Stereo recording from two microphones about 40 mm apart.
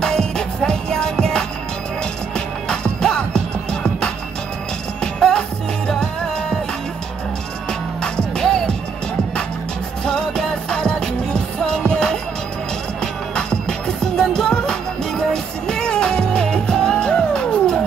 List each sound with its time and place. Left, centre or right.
0.0 s music: centre
8.0 s music: centre
10.0 s music: centre